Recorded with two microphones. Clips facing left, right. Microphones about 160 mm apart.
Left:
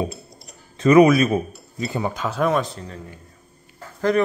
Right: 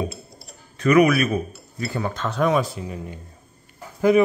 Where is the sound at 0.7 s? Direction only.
30° left (ahead or behind).